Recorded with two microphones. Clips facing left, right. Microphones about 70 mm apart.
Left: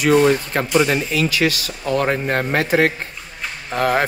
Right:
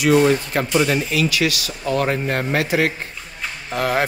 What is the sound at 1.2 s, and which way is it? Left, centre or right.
A man's voice, left.